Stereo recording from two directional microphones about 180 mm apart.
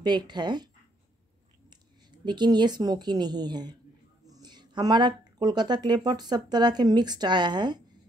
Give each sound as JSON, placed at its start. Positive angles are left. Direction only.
{"t": 0.0, "sound": "speech", "side_deg": -25}
{"t": 1.7, "sound": "a woman's voice", "side_deg": -25}